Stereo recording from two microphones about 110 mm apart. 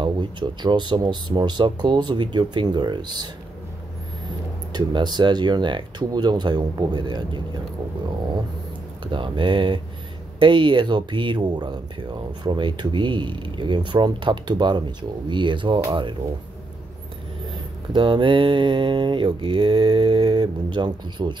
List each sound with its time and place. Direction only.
0.0 s speech: 45° right (ahead or behind)
4.7 s speech: 40° right (ahead or behind)
9.0 s speech: 50° right (ahead or behind)
17.9 s speech: 50° right (ahead or behind)